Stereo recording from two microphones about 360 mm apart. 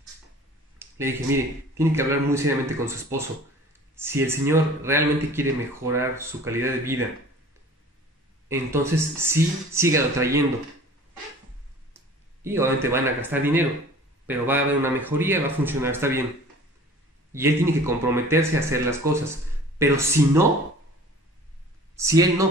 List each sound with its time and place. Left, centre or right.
0.7 s speech: centre
8.5 s speech: centre
12.4 s a man's voice: centre
17.3 s speech: centre
21.9 s speech: centre